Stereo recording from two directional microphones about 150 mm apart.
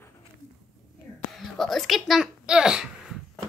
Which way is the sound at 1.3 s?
Centre (ahead or behind).